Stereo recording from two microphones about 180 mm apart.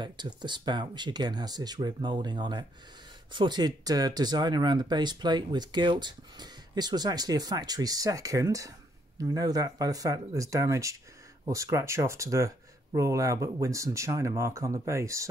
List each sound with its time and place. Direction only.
0.0 s speech: 25° right (ahead or behind)